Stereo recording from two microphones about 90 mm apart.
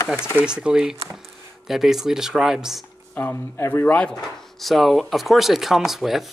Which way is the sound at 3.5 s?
30° left (ahead or behind).